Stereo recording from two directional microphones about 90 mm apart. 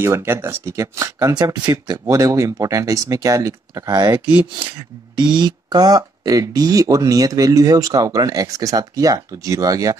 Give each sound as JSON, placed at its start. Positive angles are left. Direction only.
{"t": 0.0, "sound": "speech", "side_deg": -30}
{"t": 1.4, "sound": "speech", "side_deg": -45}
{"t": 4.6, "sound": "speech", "side_deg": -55}